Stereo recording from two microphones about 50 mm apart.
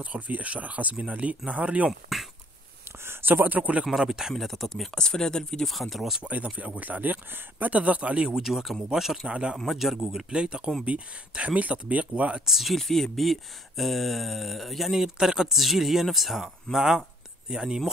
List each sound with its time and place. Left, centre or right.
0.0 s speech: right
1.9 s speech: centre
3.1 s speech: right
4.0 s speech: centre
4.4 s speech: centre
4.6 s speech: centre
5.7 s speech: centre
6.2 s speech: right
8.4 s speech: centre
9.3 s speech: centre
9.7 s speech: centre
10.1 s speech: centre
12.4 s speech: centre
12.7 s speech: centre